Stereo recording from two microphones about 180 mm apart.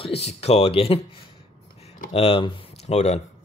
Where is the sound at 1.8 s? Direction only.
45° left (ahead or behind).